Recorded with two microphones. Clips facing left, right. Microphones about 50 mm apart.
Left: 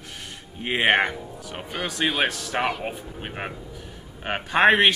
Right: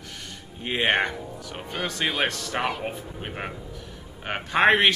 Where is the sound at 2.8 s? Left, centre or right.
Centre.